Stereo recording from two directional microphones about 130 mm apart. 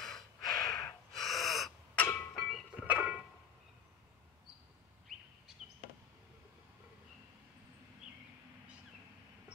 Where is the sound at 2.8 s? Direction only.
10° right (ahead or behind).